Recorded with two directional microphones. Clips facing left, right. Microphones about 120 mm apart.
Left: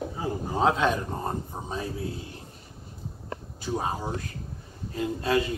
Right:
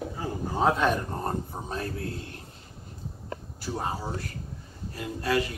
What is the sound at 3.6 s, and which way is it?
Speech, 15° left (ahead or behind).